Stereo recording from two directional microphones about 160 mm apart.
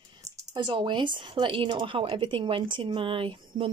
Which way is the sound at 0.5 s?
30° right (ahead or behind).